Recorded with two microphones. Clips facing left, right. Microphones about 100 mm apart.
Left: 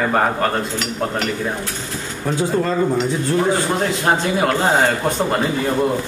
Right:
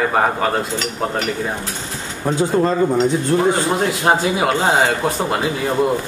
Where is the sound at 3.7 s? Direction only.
5° right (ahead or behind).